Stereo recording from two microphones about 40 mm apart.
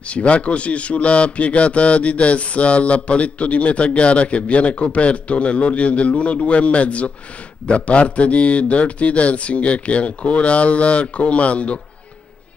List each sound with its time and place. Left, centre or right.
0.1 s a man's voice: left